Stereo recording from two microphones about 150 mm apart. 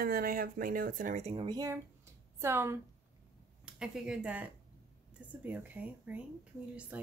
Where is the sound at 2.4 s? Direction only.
15° right (ahead or behind).